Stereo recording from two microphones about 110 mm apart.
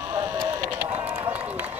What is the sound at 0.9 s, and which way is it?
Run, 15° right (ahead or behind).